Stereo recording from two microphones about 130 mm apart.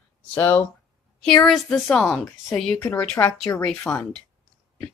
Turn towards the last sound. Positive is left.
turn(degrees=5)  # may be behind; listen again after turning